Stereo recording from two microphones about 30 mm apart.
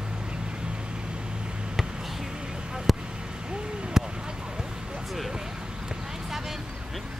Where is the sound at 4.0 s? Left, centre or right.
Centre.